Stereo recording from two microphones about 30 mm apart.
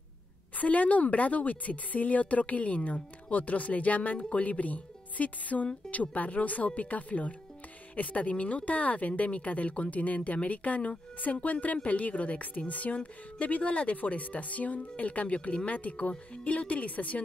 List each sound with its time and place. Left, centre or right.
0.6 s speech: left